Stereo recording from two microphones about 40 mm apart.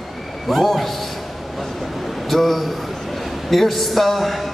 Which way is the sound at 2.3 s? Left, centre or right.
Centre.